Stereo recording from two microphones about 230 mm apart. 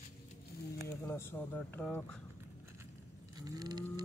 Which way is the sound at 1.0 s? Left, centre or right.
Centre.